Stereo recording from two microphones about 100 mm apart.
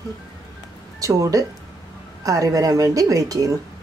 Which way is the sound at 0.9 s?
35° right (ahead or behind).